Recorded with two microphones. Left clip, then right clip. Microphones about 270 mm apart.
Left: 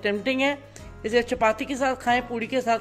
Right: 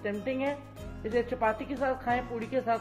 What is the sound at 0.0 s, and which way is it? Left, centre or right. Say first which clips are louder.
A woman's voice: left 8 dB; left.